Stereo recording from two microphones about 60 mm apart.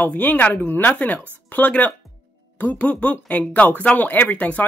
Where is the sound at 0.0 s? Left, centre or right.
Left.